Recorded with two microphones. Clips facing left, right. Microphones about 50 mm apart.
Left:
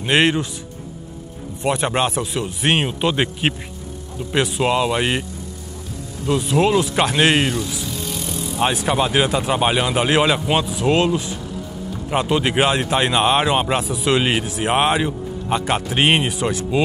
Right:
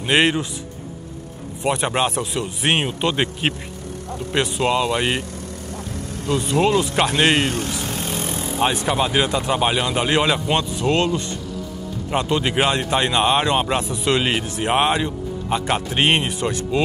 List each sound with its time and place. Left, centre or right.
0.0 s speech: centre
1.6 s speech: centre
6.3 s speech: centre
7.5 s vehicle: right
8.5 s speech: centre